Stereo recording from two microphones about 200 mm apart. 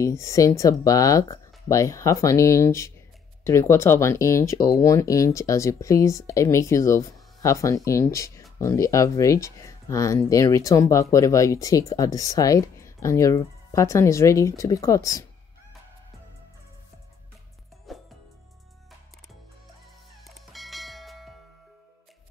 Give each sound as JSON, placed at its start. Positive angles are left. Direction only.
{"t": 0.0, "sound": "speech", "side_deg": 15}
{"t": 20.2, "sound": "church bell", "side_deg": 0}